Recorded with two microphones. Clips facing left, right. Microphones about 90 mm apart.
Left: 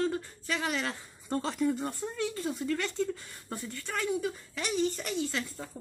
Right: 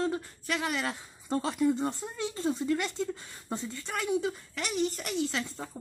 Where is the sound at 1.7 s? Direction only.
25° right (ahead or behind).